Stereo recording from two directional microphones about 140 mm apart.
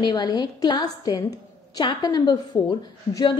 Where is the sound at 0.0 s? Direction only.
30° left (ahead or behind).